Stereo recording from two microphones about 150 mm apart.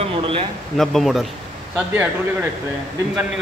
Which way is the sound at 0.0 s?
40° right (ahead or behind).